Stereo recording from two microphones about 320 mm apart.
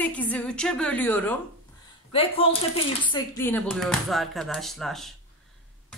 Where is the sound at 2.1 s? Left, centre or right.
Centre.